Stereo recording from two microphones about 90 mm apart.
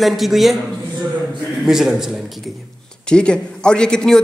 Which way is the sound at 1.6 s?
5° right (ahead or behind).